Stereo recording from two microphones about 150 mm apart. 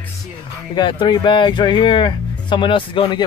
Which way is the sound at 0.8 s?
30° left (ahead or behind).